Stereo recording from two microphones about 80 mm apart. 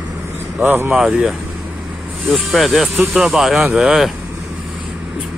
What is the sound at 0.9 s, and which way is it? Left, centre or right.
Speech, centre.